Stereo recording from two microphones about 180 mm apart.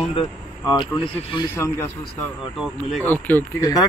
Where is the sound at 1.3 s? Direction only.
25° left (ahead or behind).